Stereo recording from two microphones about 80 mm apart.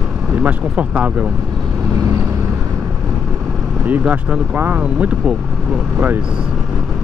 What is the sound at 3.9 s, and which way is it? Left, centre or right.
Speech, right.